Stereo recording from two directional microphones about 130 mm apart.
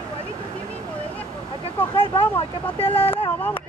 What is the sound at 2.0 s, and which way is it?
Speech, 45° left (ahead or behind).